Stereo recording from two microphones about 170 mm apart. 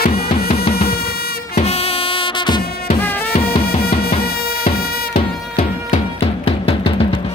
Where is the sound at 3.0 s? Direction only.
10° left (ahead or behind).